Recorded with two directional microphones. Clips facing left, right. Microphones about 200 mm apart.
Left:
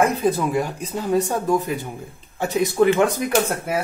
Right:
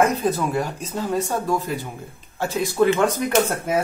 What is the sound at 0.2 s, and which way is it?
Speech, 15° left (ahead or behind).